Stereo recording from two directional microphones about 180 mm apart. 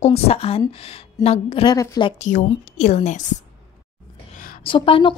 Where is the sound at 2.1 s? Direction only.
45° left (ahead or behind).